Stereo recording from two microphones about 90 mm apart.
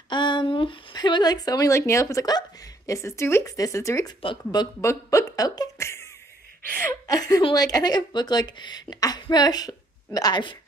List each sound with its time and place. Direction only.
0.1 s a sound: 60° left (ahead or behind)
0.9 s a woman's voice: 55° left (ahead or behind)
1.7 s a woman's voice: 35° left (ahead or behind)
4.2 s speech: 75° left (ahead or behind)
4.8 s a woman's voice: 40° left (ahead or behind)
5.8 s cough: 30° left (ahead or behind)
6.8 s a woman's voice: 40° left (ahead or behind); by 10.6 s 60° left (ahead or behind)